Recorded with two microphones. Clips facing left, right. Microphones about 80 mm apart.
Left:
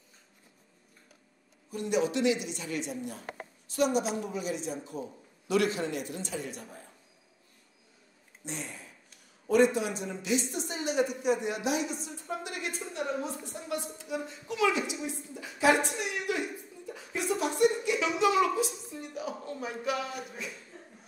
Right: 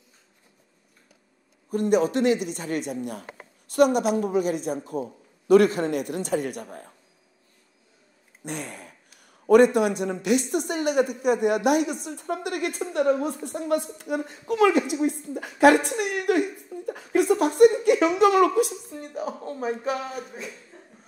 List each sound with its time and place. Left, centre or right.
1.7 s a woman's voice: right
8.5 s a woman's voice: right
18.9 s a man's voice: right